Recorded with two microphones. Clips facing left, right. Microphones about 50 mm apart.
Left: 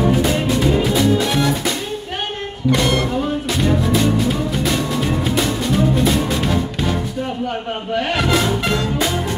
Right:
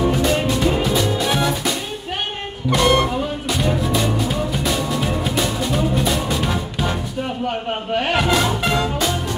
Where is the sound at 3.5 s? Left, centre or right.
Centre.